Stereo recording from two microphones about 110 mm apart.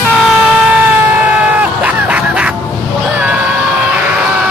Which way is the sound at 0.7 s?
15° right (ahead or behind).